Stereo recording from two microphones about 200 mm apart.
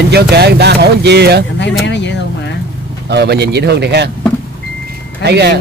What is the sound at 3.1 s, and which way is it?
Speech, 55° right (ahead or behind).